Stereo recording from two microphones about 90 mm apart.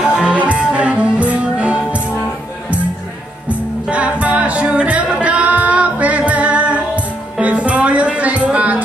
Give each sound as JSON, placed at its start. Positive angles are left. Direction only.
{"t": 0.0, "sound": "music", "side_deg": -10}
{"t": 3.4, "sound": "music", "side_deg": -15}